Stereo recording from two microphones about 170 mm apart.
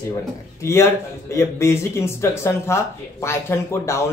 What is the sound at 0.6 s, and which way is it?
A man's voice, 15° left (ahead or behind).